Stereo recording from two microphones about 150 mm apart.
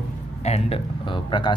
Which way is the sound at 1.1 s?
35° left (ahead or behind).